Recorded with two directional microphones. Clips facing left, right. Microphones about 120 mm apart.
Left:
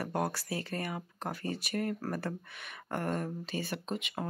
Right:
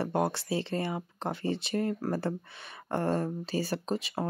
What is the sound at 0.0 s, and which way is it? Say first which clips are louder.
Speech: right 4 dB; 25° right (ahead or behind).